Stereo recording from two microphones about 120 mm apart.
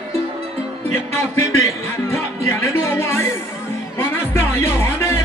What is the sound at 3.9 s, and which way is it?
Music, 20° left (ahead or behind).